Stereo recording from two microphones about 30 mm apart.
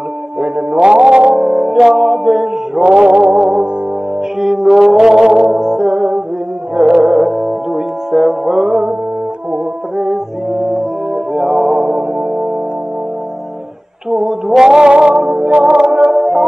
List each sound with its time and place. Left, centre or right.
0.4 s music: right
1.3 s music: centre
2.0 s a sound: centre
2.8 s music: right
3.3 s music: right
4.4 s a sound: centre
4.9 s music: centre
7.2 s music: centre
9.9 s brass instrument: right
10.5 s brass instrument: centre
11.3 s music: centre
11.8 s music: right
14.1 s music: centre; by 16.1 s right
16.2 s music: centre